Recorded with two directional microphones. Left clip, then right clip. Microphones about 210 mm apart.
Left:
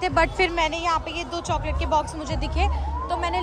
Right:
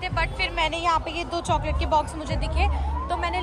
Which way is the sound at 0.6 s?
15° left (ahead or behind).